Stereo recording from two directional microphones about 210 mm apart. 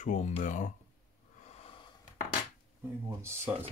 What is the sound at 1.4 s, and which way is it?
Sniff, 30° left (ahead or behind).